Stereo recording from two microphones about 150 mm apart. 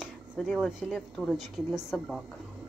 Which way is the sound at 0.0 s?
5° right (ahead or behind).